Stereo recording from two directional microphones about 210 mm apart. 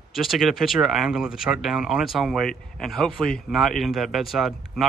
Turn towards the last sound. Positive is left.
turn(degrees=0)  # may be behind; listen again after turning